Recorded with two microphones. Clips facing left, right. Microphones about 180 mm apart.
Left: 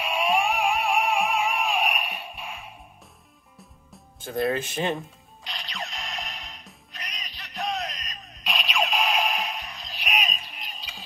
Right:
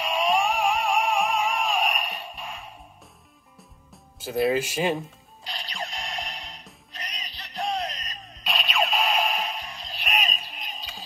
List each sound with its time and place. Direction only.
0.0 s music: 5° left (ahead or behind)
3.5 s music: 5° right (ahead or behind)
5.4 s music: 30° right (ahead or behind)
8.5 s music: centre (ahead or behind)
9.7 s music: 30° right (ahead or behind)
10.0 s music: centre (ahead or behind)
10.8 s a sound: 45° right (ahead or behind)